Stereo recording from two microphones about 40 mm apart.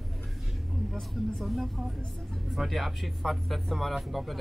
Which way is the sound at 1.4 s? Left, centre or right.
Centre.